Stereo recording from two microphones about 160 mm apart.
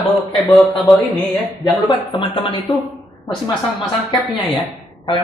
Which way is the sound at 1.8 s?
30° left (ahead or behind).